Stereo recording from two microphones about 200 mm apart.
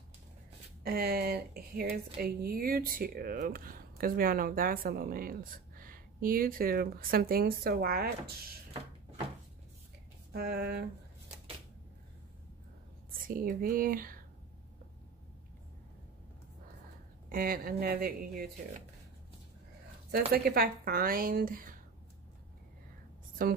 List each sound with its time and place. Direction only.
0.8 s speech: 50° right (ahead or behind)
10.3 s speech: 50° right (ahead or behind)
13.2 s speech: 45° right (ahead or behind)
17.3 s speech: 45° right (ahead or behind)
20.1 s speech: 50° right (ahead or behind)
23.4 s speech: 45° right (ahead or behind)